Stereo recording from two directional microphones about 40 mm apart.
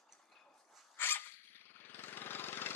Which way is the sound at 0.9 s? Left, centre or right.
Left.